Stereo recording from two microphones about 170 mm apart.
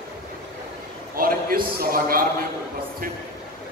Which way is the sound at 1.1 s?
60° right (ahead or behind).